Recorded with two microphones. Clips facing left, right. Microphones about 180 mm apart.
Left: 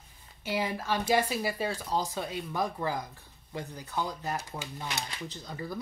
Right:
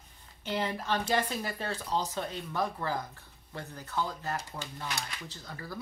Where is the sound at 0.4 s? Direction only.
10° left (ahead or behind).